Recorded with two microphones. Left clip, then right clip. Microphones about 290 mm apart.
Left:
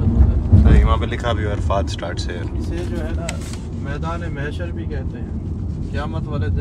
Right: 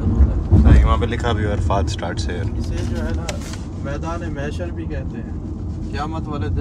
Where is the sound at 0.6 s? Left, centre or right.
Centre.